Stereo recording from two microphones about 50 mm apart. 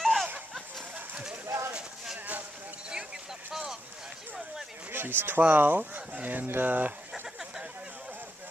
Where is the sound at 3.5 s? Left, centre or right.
Centre.